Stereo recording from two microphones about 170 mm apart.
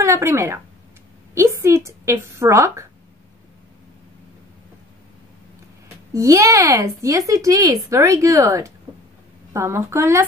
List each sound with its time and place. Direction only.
0.0 s a woman's voice: 15° right (ahead or behind)
6.1 s a woman's voice: 15° right (ahead or behind)